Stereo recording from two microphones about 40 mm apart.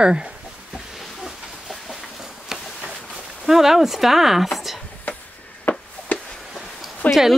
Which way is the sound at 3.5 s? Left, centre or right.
Centre.